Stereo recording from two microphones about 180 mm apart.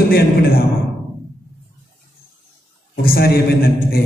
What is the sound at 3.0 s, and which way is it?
Speech, 60° left (ahead or behind).